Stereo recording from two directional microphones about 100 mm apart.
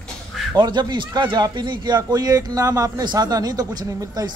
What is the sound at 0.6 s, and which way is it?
A man's voice, 45° right (ahead or behind).